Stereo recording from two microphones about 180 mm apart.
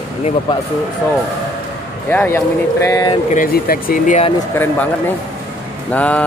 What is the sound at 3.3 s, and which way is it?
Speech, 50° left (ahead or behind).